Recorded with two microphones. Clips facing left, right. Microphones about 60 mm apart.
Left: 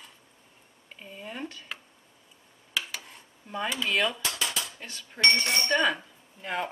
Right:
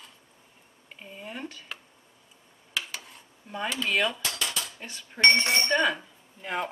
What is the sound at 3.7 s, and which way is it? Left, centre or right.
Speech, centre.